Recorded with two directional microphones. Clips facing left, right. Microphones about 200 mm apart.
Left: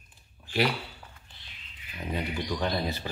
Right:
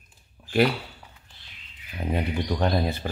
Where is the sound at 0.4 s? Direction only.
55° right (ahead or behind).